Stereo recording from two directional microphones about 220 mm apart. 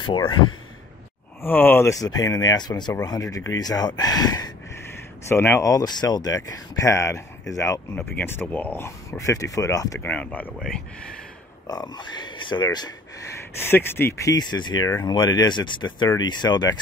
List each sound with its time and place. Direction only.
0.0 s speech: 20° left (ahead or behind)
1.4 s speech: 10° left (ahead or behind)
11.6 s speech: 15° left (ahead or behind)